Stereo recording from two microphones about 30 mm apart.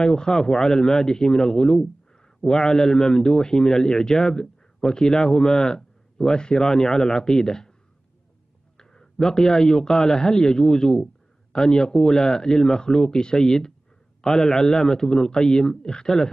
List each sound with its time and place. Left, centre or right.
0.0 s a man's voice: left
6.6 s a man's voice: centre
9.3 s a man's voice: centre